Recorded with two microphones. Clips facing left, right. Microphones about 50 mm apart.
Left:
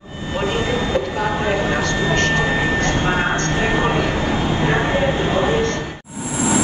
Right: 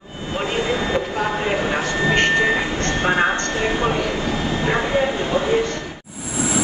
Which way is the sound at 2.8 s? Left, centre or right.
Left.